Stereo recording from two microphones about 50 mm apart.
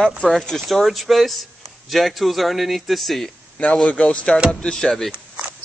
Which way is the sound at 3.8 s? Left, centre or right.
Left.